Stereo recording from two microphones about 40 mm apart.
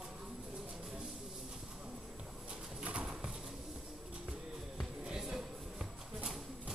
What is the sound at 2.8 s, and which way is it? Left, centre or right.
Horse, right.